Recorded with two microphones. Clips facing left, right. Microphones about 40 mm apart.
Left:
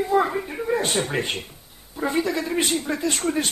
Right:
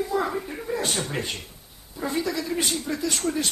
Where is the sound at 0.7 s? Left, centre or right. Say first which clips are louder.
Left 5 dB; left.